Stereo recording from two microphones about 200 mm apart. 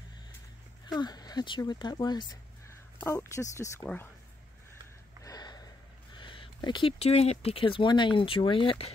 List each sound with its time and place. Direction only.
0.8 s speech: 20° left (ahead or behind)
5.2 s a sound: 20° left (ahead or behind)
6.1 s speech: 25° left (ahead or behind)